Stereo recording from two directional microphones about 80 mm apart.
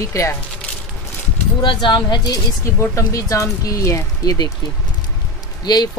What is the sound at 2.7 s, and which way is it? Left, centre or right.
Speech, left.